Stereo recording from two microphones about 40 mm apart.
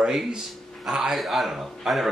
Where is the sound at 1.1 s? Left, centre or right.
Centre.